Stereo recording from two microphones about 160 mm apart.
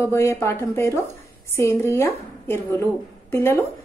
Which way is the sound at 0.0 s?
15° left (ahead or behind).